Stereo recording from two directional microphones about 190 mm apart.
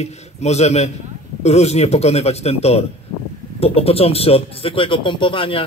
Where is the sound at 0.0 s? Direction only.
35° left (ahead or behind).